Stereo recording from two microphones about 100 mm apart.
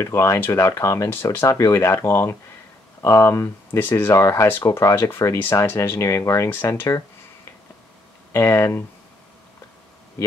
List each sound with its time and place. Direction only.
0.0 s speech: 30° left (ahead or behind)
8.3 s speech: 25° left (ahead or behind)